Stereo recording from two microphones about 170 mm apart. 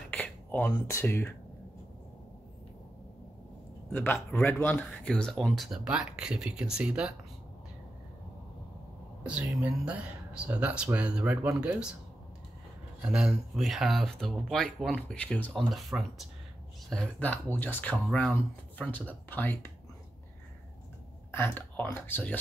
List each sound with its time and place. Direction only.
0.1 s a sound: 10° left (ahead or behind)
0.7 s speech: 15° left (ahead or behind)
3.9 s speech: 10° left (ahead or behind); by 7.1 s 5° right (ahead or behind)
9.2 s speech: 5° right (ahead or behind)
13.0 s speech: 5° right (ahead or behind)
21.3 s speech: 10° left (ahead or behind)